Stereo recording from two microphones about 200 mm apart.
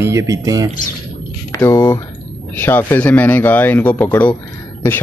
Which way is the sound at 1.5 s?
15° left (ahead or behind).